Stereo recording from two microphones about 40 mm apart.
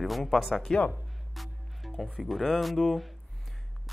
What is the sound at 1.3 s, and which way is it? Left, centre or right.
Music, centre.